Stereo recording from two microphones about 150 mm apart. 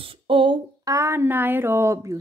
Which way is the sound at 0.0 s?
35° right (ahead or behind).